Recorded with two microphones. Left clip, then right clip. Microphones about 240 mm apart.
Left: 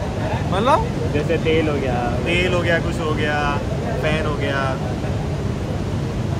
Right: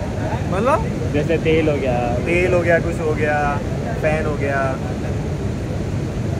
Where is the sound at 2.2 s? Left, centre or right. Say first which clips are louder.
Right 3 dB; centre.